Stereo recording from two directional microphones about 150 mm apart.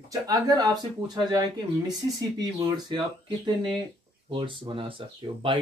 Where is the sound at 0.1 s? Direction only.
25° right (ahead or behind).